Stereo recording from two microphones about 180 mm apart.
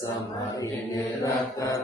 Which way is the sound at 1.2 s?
20° left (ahead or behind).